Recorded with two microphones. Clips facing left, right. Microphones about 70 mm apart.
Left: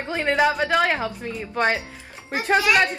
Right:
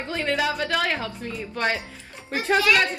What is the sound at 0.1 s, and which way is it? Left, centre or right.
A woman's voice, left.